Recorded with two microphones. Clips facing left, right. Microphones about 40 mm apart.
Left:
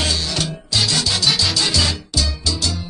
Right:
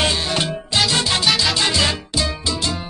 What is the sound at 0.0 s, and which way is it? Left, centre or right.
Music, right.